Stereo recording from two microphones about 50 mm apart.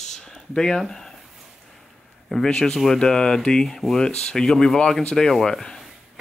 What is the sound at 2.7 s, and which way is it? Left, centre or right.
Speech, centre.